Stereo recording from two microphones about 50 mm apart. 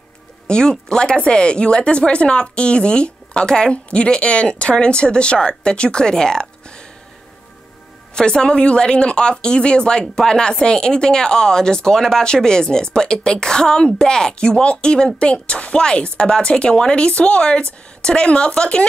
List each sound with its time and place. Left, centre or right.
0.5 s speech: centre
8.1 s a woman's voice: centre